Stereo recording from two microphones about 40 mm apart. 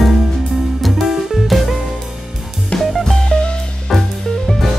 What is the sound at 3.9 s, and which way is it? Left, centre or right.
Music, centre.